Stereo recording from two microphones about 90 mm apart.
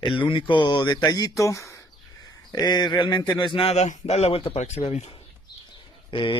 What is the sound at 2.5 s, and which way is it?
Speech, 50° left (ahead or behind).